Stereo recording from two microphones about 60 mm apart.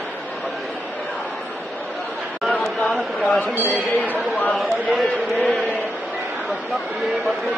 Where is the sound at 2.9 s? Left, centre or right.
Left.